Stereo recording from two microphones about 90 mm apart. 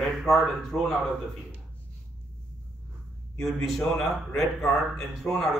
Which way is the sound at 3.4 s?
5° left (ahead or behind).